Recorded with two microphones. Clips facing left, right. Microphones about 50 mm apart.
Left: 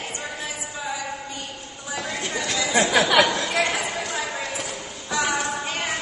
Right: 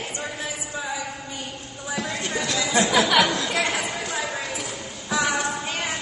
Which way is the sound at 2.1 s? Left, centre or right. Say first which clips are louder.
Even; centre.